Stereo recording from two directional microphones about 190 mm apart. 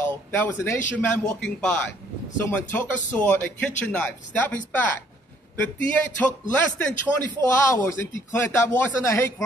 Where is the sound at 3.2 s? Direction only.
10° left (ahead or behind).